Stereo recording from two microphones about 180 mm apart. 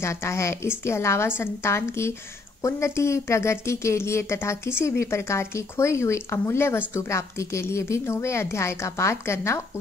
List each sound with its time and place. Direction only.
0.0 s speech: 15° left (ahead or behind)